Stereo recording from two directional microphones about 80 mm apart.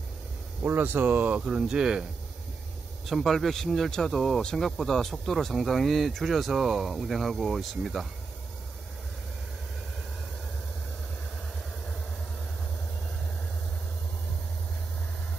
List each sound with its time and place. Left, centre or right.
0.6 s speech: right
3.1 s speech: centre